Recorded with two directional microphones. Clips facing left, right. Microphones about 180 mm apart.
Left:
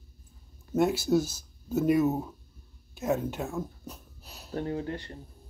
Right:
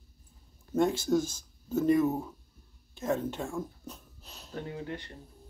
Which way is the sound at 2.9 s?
10° left (ahead or behind).